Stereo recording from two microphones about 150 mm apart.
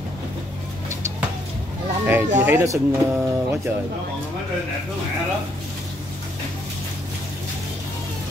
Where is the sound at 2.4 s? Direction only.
20° right (ahead or behind).